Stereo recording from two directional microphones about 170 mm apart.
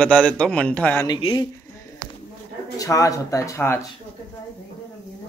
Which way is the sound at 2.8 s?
20° left (ahead or behind).